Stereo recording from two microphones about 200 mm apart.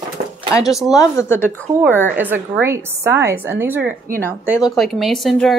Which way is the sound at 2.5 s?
10° right (ahead or behind).